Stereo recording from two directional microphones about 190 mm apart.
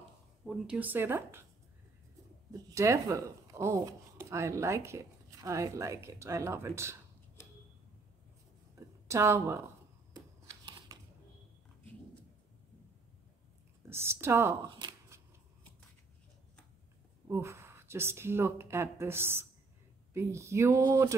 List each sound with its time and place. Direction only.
0.5 s speech: 5° right (ahead or behind)
2.5 s speech: 15° right (ahead or behind)
8.7 s a sound: 15° right (ahead or behind)
10.1 s shuffling cards: 20° right (ahead or behind)
13.8 s speech: 15° right (ahead or behind)
17.3 s speech: 15° right (ahead or behind)